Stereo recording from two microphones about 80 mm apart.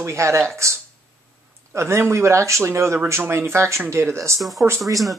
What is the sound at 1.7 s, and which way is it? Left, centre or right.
Speech, right.